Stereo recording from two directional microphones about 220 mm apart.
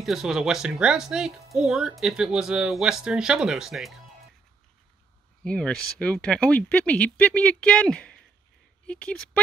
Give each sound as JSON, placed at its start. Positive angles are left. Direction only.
{"t": 0.0, "sound": "speech", "side_deg": 0}
{"t": 5.4, "sound": "speech", "side_deg": 5}